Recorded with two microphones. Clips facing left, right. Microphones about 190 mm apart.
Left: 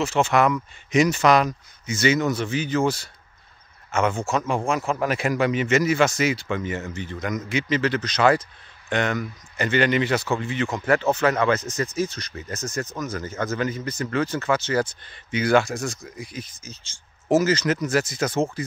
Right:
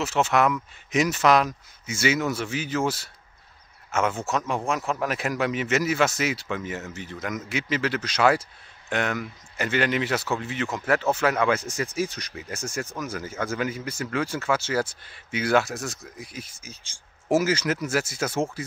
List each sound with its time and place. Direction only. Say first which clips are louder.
0.0 s speech: left 2 dB; 5° right (ahead or behind)